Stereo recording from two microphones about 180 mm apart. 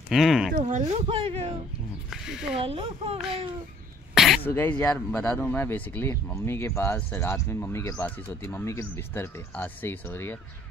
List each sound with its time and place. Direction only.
0.1 s speech: centre (ahead or behind)
0.5 s speech: 45° right (ahead or behind)
1.0 s speech: 30° right (ahead or behind)
2.0 s speech: centre (ahead or behind)
2.6 s speech: 30° right (ahead or behind)
4.1 s throat clearing: centre (ahead or behind)
4.5 s speech: 10° left (ahead or behind)